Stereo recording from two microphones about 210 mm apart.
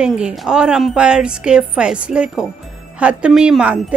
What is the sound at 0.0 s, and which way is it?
Speech, 5° right (ahead or behind).